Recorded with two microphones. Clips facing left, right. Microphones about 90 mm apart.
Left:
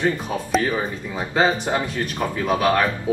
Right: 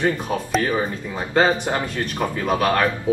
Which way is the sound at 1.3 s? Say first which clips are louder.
Right 1 dB; 5° left (ahead or behind).